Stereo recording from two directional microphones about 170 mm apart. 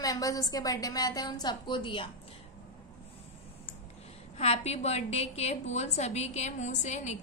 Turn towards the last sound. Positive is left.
turn(degrees=45)  # may be behind; listen again after turning